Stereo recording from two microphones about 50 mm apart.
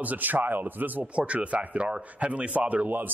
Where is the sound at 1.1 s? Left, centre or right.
Right.